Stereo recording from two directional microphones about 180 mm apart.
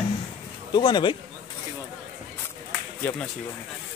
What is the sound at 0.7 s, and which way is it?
Speech, 25° left (ahead or behind).